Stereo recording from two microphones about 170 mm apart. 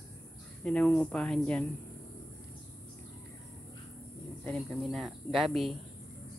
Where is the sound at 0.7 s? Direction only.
5° left (ahead or behind).